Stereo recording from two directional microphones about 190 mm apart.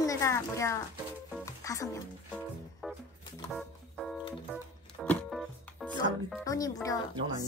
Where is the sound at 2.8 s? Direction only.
Centre (ahead or behind).